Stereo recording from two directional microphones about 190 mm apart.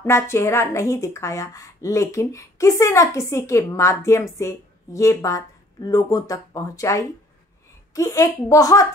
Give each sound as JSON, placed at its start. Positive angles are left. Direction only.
{"t": 0.0, "sound": "a woman's voice", "side_deg": 15}